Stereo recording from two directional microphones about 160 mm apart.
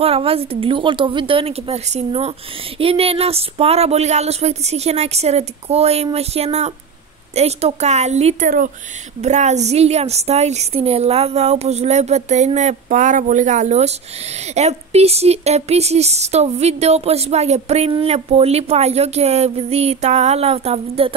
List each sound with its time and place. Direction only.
0.0 s a woman's voice: 35° right (ahead or behind)